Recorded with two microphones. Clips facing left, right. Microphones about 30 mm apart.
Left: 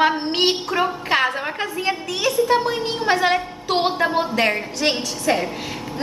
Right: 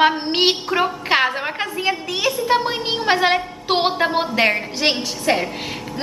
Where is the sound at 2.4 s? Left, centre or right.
Right.